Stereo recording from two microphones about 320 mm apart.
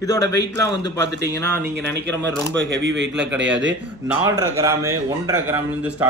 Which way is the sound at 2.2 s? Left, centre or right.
Right.